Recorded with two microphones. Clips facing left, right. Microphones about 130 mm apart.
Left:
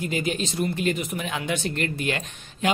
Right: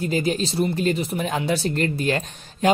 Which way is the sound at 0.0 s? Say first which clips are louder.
Right 4 dB; 35° right (ahead or behind).